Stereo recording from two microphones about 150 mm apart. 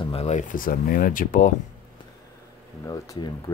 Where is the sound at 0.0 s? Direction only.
40° left (ahead or behind); by 1.5 s 65° left (ahead or behind).